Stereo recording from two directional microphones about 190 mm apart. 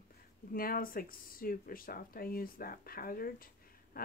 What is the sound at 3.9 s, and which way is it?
Quack, 50° left (ahead or behind).